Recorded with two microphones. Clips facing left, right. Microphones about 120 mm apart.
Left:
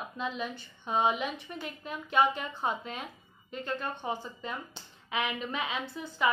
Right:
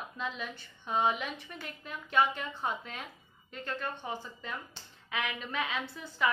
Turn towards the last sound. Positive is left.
turn(degrees=15)  # may be behind; listen again after turning